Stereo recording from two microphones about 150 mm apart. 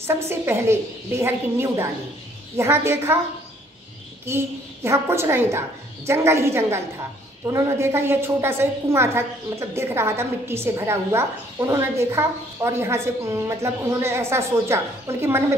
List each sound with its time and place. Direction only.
0.0 s a woman's voice: 15° right (ahead or behind)
4.3 s a woman's voice: 15° right (ahead or behind)